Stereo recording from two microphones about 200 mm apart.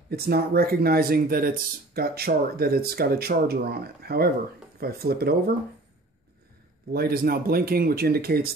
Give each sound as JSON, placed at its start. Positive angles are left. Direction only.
{"t": 0.1, "sound": "speech", "side_deg": -50}
{"t": 6.9, "sound": "speech", "side_deg": -50}